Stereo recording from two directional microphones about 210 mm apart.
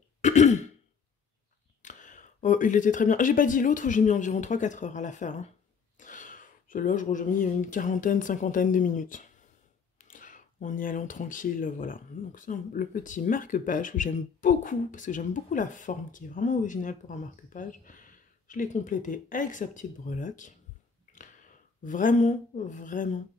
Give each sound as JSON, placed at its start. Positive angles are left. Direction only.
{"t": 0.2, "sound": "throat clearing", "side_deg": 35}
{"t": 1.8, "sound": "speech", "side_deg": 35}